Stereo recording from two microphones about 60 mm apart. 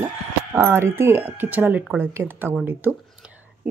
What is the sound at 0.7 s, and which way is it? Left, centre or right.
Speech, right.